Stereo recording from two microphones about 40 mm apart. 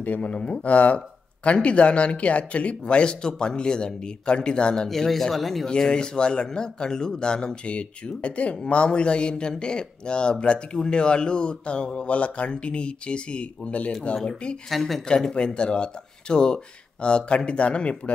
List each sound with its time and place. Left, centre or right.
0.0 s speech: left
4.8 s speech: centre
5.9 s speech: left
14.1 s speech: left
14.7 s speech: centre
15.0 s speech: left